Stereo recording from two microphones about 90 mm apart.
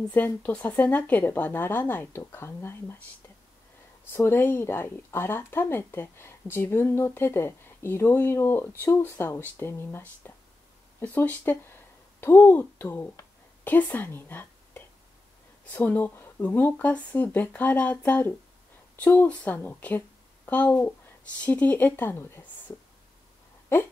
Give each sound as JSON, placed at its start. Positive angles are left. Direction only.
{"t": 0.1, "sound": "speech", "side_deg": 20}
{"t": 4.1, "sound": "a woman's voice", "side_deg": 25}